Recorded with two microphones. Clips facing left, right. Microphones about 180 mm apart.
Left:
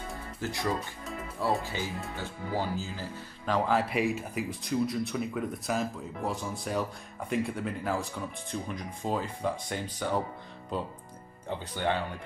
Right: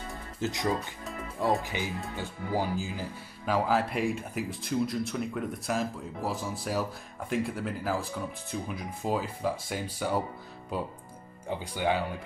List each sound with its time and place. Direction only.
0.4 s speech: 20° right (ahead or behind)